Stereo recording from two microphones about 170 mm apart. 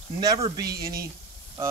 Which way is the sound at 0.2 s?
20° right (ahead or behind).